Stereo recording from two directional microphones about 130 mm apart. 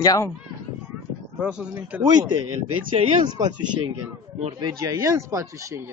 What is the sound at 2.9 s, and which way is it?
Speech, 50° right (ahead or behind).